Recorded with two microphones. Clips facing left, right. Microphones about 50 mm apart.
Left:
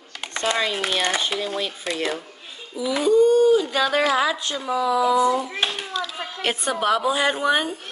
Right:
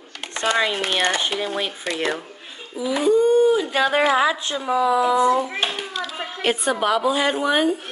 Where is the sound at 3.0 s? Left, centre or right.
Right.